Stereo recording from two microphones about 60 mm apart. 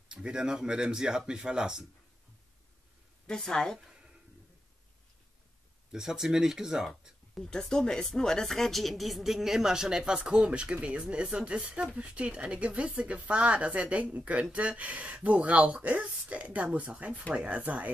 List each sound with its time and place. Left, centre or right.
0.1 s speech: centre
3.3 s speech: centre
5.9 s speech: centre
7.4 s speech: centre; by 17.9 s right